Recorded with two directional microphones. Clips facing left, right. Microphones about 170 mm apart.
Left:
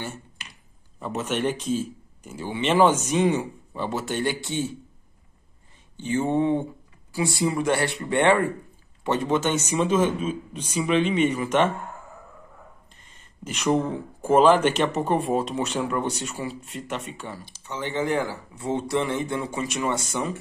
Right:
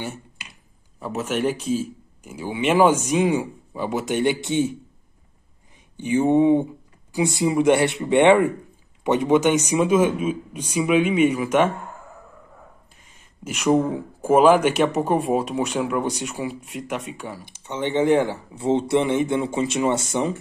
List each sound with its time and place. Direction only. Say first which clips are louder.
0.0 s finger snapping: right 3 dB; 10° right (ahead or behind)
0.9 s speech: right 2 dB; 5° right (ahead or behind)
5.9 s speech: right 5 dB; 15° right (ahead or behind)
12.9 s speech: right 1 dB; 10° right (ahead or behind)
17.6 s speech: right 7 dB; 25° right (ahead or behind)